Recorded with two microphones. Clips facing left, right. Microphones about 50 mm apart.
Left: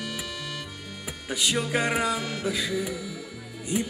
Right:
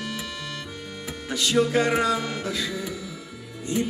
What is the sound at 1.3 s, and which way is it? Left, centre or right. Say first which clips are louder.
Music: right 5 dB; centre.